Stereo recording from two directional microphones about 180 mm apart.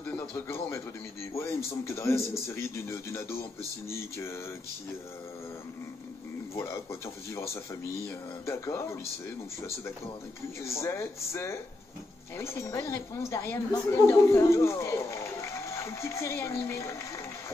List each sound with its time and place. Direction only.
0.0 s speech: 10° left (ahead or behind)
6.5 s speech: 15° left (ahead or behind)
10.6 s a woman's voice: 15° left (ahead or behind)